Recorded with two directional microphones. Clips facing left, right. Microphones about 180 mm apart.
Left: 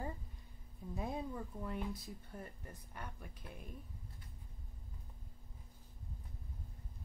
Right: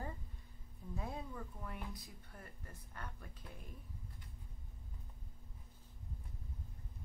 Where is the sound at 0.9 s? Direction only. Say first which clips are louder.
Left 4 dB; 20° left (ahead or behind).